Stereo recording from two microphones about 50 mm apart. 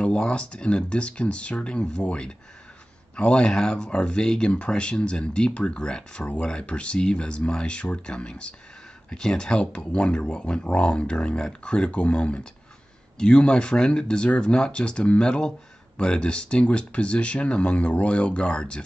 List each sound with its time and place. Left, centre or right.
0.0 s speech: left